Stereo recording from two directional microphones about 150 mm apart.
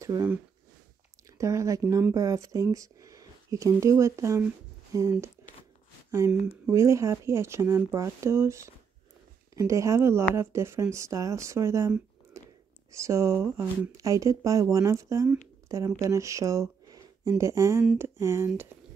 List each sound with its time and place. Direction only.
0.0 s speech: 20° right (ahead or behind)
1.4 s speech: 20° right (ahead or behind)
6.7 s speech: 20° right (ahead or behind)
12.9 s speech: 20° right (ahead or behind)